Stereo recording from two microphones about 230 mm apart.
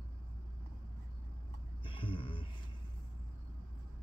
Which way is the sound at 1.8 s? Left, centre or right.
Left.